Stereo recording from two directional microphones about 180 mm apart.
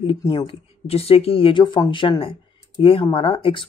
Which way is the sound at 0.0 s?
25° left (ahead or behind).